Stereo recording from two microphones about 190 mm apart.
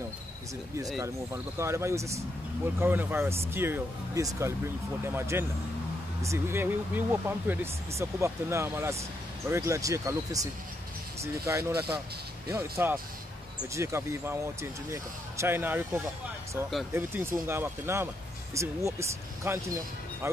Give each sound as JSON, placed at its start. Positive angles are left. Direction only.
{"t": 1.0, "sound": "speech", "side_deg": -15}